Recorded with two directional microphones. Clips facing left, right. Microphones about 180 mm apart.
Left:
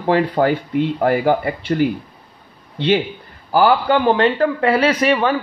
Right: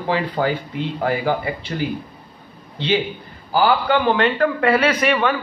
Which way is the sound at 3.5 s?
40° left (ahead or behind).